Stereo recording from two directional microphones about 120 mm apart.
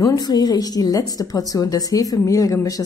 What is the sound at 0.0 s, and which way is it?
A woman's voice, 35° left (ahead or behind).